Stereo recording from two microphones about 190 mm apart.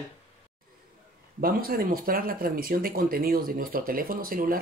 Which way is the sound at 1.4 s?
50° right (ahead or behind).